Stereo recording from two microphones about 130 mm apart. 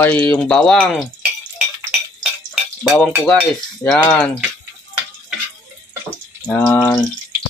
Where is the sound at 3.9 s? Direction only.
5° left (ahead or behind).